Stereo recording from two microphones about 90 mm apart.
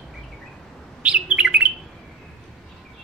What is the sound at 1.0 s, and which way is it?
Bird, 15° right (ahead or behind).